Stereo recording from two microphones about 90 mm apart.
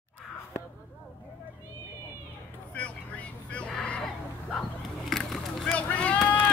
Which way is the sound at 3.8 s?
10° left (ahead or behind).